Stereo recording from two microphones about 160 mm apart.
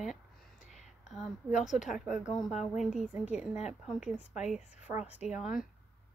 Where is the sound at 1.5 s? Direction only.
50° left (ahead or behind).